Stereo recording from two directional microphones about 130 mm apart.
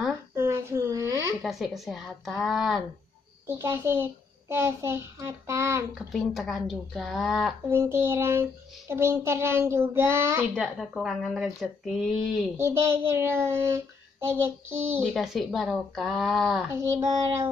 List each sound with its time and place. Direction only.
0.4 s a sound: 20° right (ahead or behind)
1.4 s speech: centre (ahead or behind)
3.4 s child singing: 20° right (ahead or behind)
5.9 s speech: centre (ahead or behind)
7.7 s child singing: 20° right (ahead or behind)
10.5 s speech: centre (ahead or behind)
12.5 s child singing: 20° right (ahead or behind)
15.0 s speech: centre (ahead or behind)
16.7 s child singing: 20° right (ahead or behind)